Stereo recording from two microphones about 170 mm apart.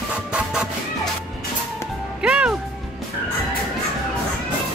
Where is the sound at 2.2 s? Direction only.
5° right (ahead or behind).